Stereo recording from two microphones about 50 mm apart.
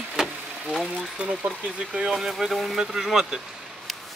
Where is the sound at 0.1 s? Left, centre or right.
Centre.